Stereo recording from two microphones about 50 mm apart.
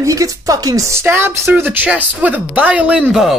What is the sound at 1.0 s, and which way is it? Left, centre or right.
Speech, right.